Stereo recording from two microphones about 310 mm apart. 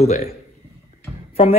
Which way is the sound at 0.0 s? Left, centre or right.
Left.